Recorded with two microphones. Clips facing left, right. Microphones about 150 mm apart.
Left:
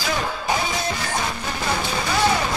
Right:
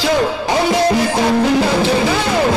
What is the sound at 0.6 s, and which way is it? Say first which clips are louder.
Music: right 12 dB; 65° right (ahead or behind).